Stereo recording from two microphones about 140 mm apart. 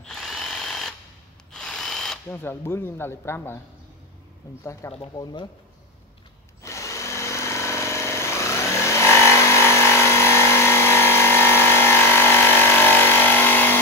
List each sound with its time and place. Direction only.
0.0 s drill: 5° left (ahead or behind)
2.2 s speech: 15° left (ahead or behind)
5.1 s speech: 35° left (ahead or behind)
6.6 s tools: 20° left (ahead or behind)